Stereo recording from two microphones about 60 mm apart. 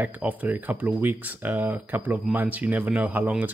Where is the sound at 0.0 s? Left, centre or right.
Right.